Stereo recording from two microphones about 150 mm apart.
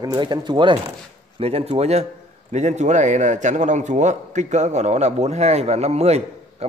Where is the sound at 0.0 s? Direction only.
25° right (ahead or behind).